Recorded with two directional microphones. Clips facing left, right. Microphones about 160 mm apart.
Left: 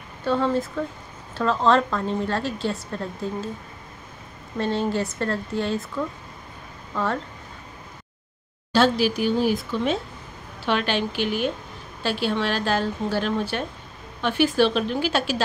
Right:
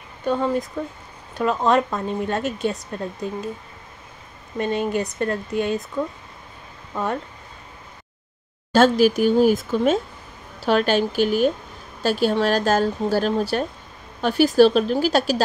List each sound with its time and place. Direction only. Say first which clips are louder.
0.2 s a woman's voice: right 1 dB; 10° right (ahead or behind)
4.6 s a woman's voice: right 1 dB; 15° right (ahead or behind)
6.9 s speech: right 1 dB; 20° right (ahead or behind)
8.7 s speech: right 4 dB; 45° right (ahead or behind)